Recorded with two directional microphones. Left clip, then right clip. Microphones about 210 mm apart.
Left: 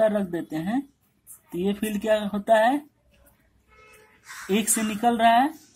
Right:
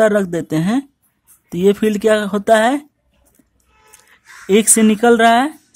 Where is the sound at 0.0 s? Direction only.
40° right (ahead or behind).